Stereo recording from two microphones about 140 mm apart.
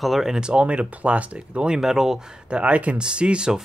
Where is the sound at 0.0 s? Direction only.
Centre (ahead or behind).